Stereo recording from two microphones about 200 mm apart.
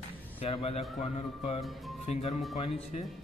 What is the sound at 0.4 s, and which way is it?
A man's voice, 30° left (ahead or behind).